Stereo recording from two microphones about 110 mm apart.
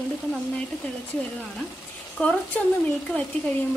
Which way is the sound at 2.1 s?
10° left (ahead or behind).